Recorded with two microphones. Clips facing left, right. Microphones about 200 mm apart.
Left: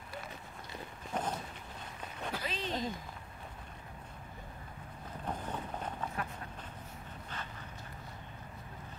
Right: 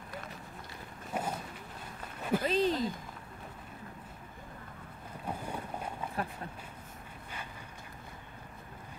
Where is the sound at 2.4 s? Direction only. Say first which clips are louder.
Right 13 dB; 45° right (ahead or behind).